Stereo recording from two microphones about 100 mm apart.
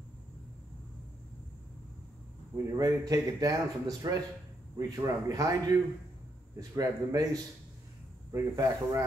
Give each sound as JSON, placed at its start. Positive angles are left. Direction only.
{"t": 2.5, "sound": "a man's voice", "side_deg": -35}
{"t": 8.3, "sound": "a man's voice", "side_deg": -30}